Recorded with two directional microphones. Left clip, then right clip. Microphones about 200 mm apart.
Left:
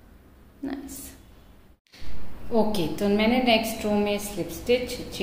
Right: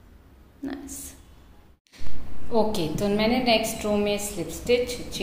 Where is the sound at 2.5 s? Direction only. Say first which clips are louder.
Right 1 dB; 5° right (ahead or behind).